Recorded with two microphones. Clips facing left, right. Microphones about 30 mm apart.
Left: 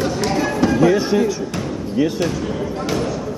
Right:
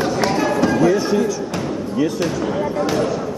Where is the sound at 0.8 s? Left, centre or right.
Centre.